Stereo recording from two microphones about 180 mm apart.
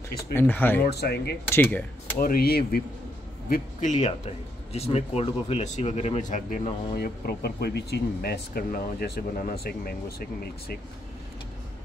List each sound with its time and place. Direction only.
0.3 s speech: 10° left (ahead or behind)
0.8 s speech: 65° left (ahead or behind)
1.5 s speech: 10° left (ahead or behind)
2.1 s a man's voice: 55° left (ahead or behind)
7.0 s speech: 60° left (ahead or behind)